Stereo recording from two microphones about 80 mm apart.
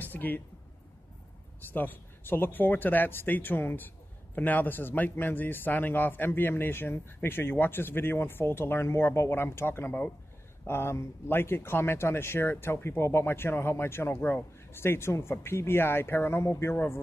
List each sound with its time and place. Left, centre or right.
0.0 s speech: left
1.7 s a man's voice: left